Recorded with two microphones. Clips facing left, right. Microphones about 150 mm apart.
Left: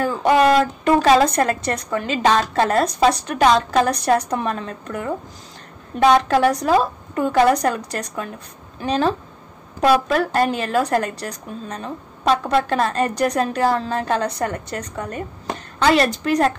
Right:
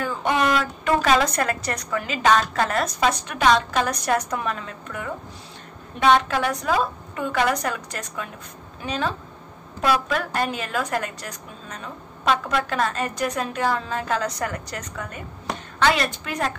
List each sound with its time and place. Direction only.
0.0 s a woman's voice: 40° left (ahead or behind)